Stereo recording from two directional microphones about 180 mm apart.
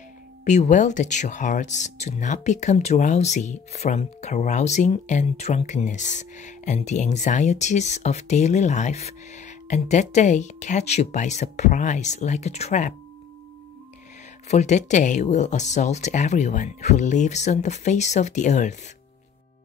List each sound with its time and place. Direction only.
0.5 s speech: 40° left (ahead or behind)
14.5 s speech: 40° left (ahead or behind)